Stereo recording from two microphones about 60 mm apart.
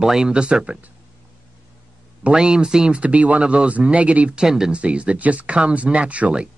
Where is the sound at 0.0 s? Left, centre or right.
Centre.